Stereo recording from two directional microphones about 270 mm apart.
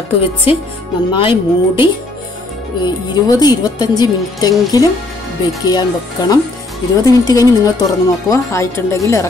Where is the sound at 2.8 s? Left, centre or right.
Centre.